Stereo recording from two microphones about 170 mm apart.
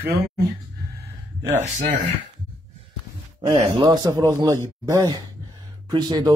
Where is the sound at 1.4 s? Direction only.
45° right (ahead or behind).